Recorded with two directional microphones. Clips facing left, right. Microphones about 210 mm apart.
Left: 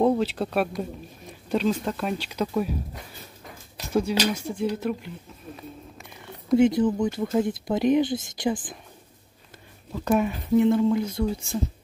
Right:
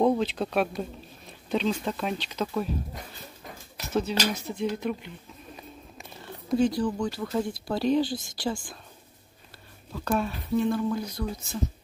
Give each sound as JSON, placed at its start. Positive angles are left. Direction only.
{"t": 0.0, "sound": "speech", "side_deg": 5}
{"t": 3.9, "sound": "speech", "side_deg": 10}
{"t": 6.5, "sound": "speech", "side_deg": 20}
{"t": 9.9, "sound": "speech", "side_deg": 15}